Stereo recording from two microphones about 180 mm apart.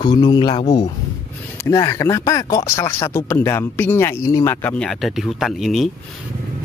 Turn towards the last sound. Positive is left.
turn(degrees=0)  # may be behind; listen again after turning